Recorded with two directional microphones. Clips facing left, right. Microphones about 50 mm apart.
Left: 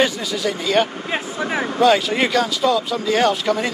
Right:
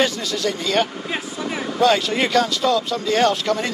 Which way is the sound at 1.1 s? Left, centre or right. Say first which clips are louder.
Left 5 dB; left.